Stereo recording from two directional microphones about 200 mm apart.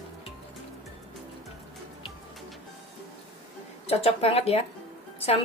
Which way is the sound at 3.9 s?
30° left (ahead or behind).